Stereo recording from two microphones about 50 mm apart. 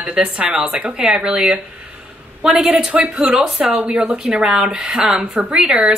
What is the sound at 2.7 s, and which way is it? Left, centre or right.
Speech, right.